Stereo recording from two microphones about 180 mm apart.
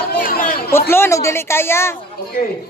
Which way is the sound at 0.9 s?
15° left (ahead or behind).